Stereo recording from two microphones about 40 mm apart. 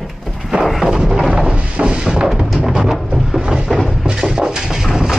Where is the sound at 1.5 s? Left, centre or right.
Right.